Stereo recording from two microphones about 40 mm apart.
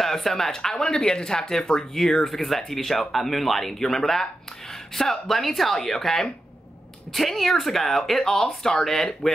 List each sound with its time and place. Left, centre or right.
0.0 s speech: centre